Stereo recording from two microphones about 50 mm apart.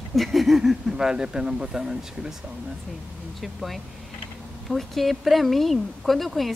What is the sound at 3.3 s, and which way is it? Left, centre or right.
Speech, centre.